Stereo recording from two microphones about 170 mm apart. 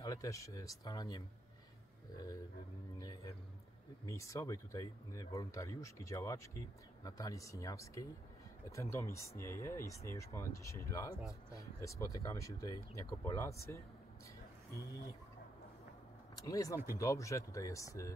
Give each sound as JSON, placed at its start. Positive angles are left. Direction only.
{"t": 0.0, "sound": "speech", "side_deg": 20}
{"t": 3.0, "sound": "speech", "side_deg": 20}
{"t": 16.3, "sound": "speech", "side_deg": 20}